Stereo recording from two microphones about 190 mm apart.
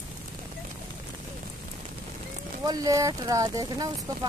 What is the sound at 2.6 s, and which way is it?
Speech, 20° right (ahead or behind).